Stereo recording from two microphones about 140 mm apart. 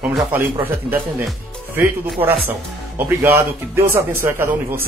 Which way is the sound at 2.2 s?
15° right (ahead or behind).